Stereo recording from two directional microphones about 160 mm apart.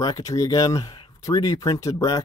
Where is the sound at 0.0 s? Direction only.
25° left (ahead or behind).